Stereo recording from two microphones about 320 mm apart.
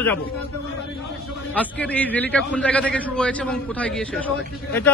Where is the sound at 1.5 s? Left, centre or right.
Centre.